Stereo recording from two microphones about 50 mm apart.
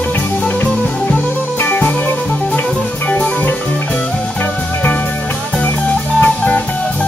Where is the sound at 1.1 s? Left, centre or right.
Left.